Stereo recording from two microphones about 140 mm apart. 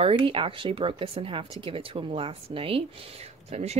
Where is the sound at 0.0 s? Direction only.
35° right (ahead or behind).